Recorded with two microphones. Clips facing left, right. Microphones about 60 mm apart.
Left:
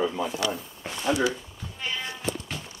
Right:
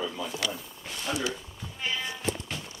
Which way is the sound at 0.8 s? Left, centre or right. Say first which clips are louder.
Left 7 dB; left.